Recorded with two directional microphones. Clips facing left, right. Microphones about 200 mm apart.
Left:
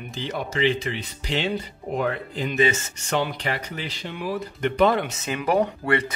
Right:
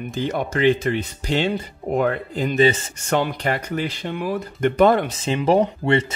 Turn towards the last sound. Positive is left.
turn(degrees=-25)  # may be behind; listen again after turning